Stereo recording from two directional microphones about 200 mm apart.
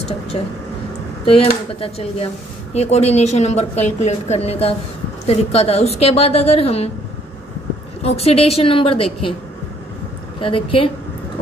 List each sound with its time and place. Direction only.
1.2 s a woman's voice: 30° left (ahead or behind)
8.2 s a woman's voice: 30° left (ahead or behind)
10.4 s a woman's voice: 25° left (ahead or behind)